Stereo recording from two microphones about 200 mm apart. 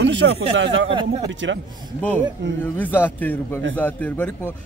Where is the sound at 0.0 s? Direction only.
65° right (ahead or behind).